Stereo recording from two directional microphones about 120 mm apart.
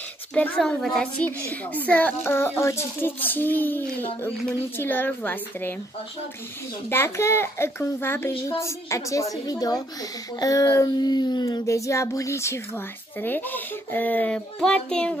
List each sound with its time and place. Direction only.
0.3 s a woman's voice: 10° left (ahead or behind)
6.9 s a child's voice: 20° left (ahead or behind)